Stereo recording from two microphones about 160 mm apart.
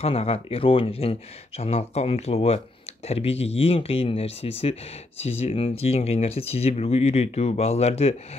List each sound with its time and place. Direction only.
0.0 s speech: 40° left (ahead or behind)